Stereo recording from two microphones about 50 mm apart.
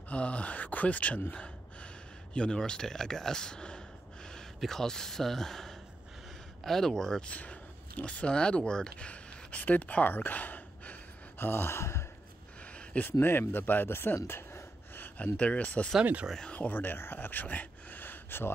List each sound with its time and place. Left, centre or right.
0.1 s speech: left
1.3 s gasp: left
2.3 s speech: centre
7.2 s speech: left
11.8 s a sound: left
13.0 s speech: left
15.3 s speech: left
16.5 s speech: left